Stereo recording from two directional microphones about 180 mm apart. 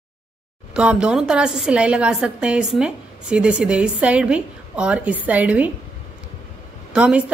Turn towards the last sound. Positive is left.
turn(degrees=-5)  # may be behind; listen again after turning